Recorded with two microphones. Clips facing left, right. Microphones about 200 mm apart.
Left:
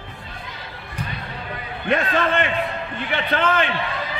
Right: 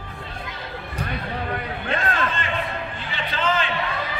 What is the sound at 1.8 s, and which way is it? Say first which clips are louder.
A man's voice: left 6 dB; 65° left (ahead or behind).